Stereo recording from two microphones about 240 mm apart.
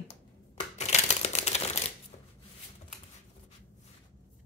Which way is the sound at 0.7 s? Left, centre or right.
Left.